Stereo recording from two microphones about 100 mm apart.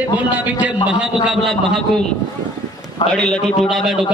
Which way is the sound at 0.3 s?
15° right (ahead or behind).